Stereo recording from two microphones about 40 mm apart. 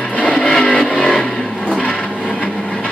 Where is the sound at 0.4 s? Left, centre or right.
Centre.